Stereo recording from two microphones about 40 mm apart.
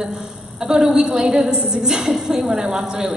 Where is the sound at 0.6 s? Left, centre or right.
Centre.